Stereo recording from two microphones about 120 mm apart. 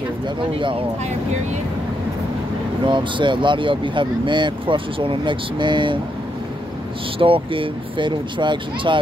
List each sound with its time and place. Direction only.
2.9 s speech: 40° right (ahead or behind)
7.2 s speech: 50° right (ahead or behind)